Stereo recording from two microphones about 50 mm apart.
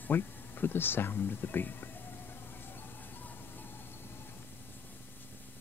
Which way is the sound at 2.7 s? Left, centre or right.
Left.